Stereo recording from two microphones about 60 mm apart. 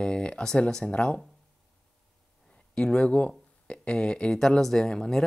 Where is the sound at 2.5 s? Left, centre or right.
Centre.